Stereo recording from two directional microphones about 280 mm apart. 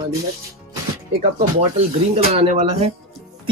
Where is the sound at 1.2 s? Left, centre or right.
Right.